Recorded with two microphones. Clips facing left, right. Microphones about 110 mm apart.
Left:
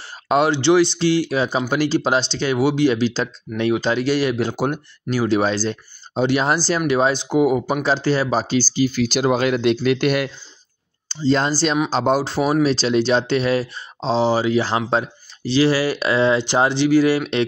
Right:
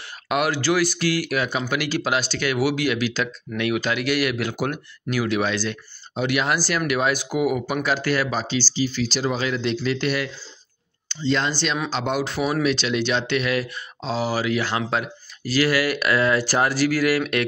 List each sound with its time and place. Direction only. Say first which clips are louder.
0.3 s speech: left 6 dB; 25° left (ahead or behind); by 10.3 s 50° left (ahead or behind)
11.1 s speech: left 5 dB; 40° left (ahead or behind)